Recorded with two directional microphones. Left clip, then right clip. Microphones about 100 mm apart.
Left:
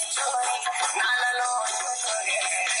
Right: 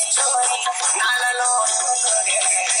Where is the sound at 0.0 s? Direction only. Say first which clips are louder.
Right 6 dB; 40° right (ahead or behind).